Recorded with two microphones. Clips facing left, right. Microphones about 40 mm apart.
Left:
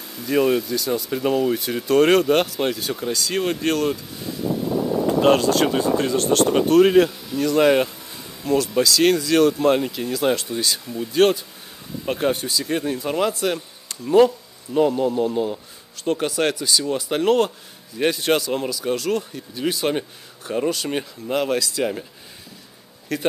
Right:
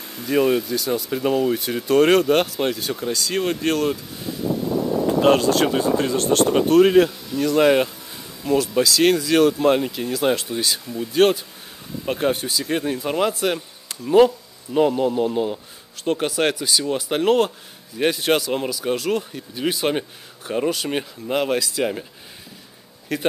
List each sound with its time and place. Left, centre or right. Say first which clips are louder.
0.0 s a sound: right 1 dB; right
0.3 s speech: even; centre
4.5 s vehicle: right 1 dB; centre
5.2 s speech: even; centre
12.4 s speech: even; right
23.1 s speech: even; centre